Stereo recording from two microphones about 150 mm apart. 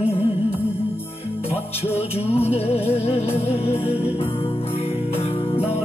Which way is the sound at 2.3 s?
40° left (ahead or behind).